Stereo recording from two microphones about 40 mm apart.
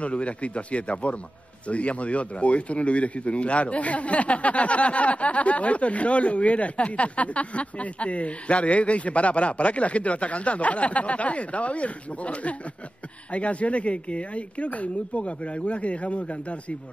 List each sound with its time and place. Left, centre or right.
0.0 s speech: left